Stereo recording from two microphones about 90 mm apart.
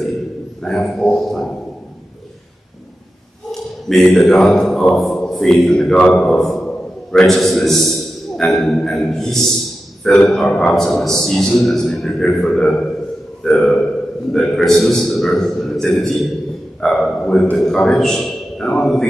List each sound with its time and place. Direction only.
0.6 s a man's voice: 5° left (ahead or behind)
3.9 s a man's voice: centre (ahead or behind)